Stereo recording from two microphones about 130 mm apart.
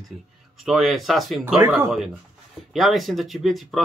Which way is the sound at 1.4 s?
15° right (ahead or behind).